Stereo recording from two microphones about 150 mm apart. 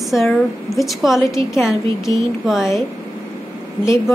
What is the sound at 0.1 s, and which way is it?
A woman's voice, centre (ahead or behind).